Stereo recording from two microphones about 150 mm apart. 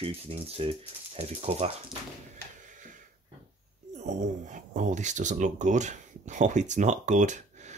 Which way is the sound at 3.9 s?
50° right (ahead or behind).